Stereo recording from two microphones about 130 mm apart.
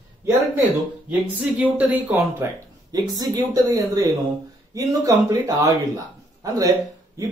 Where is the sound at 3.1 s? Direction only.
30° right (ahead or behind).